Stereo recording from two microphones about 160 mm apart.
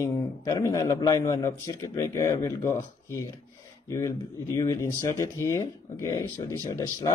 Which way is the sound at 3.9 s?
20° left (ahead or behind).